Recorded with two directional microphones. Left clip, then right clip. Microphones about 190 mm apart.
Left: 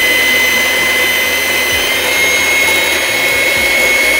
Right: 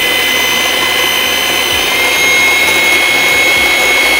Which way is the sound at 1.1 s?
Centre (ahead or behind).